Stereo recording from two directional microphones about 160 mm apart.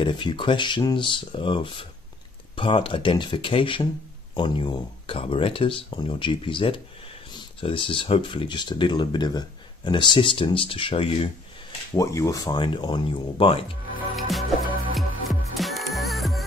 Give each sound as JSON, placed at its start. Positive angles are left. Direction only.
{"t": 0.0, "sound": "speech", "side_deg": 30}
{"t": 12.0, "sound": "speech", "side_deg": 20}
{"t": 14.1, "sound": "music", "side_deg": 0}